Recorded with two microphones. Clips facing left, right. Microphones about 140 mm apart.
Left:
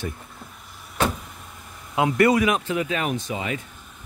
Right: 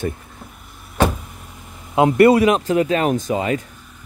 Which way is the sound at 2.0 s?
30° right (ahead or behind).